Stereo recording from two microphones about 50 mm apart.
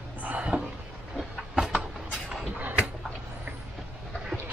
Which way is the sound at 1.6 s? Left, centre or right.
Centre.